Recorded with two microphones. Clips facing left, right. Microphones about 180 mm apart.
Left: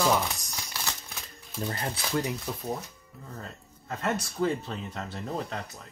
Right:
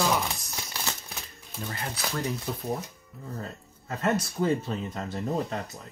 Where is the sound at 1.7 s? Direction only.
30° left (ahead or behind).